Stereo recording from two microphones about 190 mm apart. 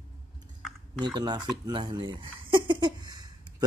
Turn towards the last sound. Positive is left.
turn(degrees=-20)  # may be behind; listen again after turning